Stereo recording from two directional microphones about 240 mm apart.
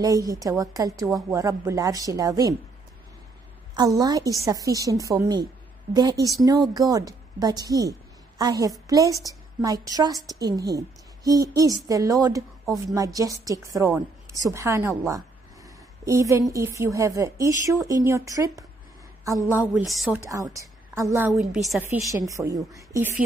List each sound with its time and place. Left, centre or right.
0.0 s a woman's voice: centre
4.0 s a woman's voice: centre
20.2 s a woman's voice: centre
21.3 s a woman's voice: centre